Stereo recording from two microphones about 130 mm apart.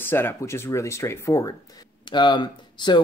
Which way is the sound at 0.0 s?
15° left (ahead or behind).